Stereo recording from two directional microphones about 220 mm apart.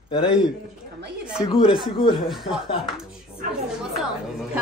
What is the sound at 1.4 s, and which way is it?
Speech, 20° left (ahead or behind).